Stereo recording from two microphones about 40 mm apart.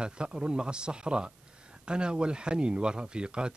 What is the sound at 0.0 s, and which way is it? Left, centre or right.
Speech, right.